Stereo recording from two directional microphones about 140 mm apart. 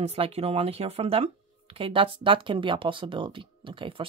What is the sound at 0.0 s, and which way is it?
Speech, 45° right (ahead or behind).